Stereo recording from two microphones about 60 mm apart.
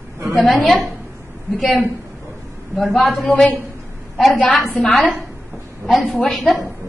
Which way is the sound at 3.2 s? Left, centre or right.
Left.